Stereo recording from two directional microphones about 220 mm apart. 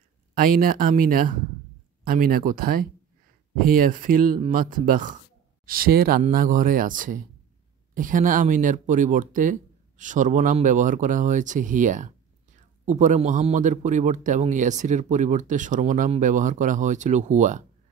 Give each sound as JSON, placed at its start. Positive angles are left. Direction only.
{"t": 0.3, "sound": "speech", "side_deg": -40}